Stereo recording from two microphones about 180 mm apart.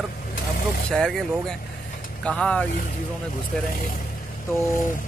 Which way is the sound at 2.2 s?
5° left (ahead or behind).